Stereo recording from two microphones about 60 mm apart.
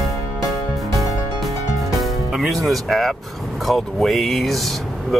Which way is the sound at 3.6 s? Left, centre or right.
Centre.